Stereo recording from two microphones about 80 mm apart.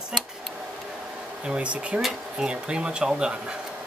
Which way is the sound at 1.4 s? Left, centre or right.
Centre.